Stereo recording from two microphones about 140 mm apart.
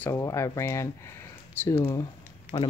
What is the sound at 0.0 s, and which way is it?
Speech, 20° left (ahead or behind).